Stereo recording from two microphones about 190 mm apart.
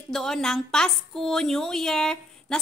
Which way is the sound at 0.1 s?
Centre (ahead or behind).